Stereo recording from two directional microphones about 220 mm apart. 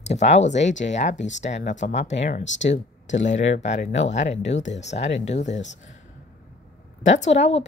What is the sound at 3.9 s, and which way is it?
Speech, 55° left (ahead or behind).